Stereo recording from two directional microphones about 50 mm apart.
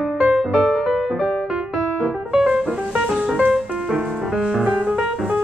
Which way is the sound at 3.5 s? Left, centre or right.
Centre.